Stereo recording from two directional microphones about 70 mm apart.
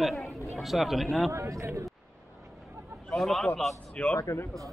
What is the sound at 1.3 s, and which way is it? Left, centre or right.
Speech, right.